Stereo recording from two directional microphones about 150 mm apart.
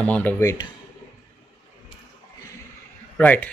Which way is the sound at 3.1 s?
10° left (ahead or behind).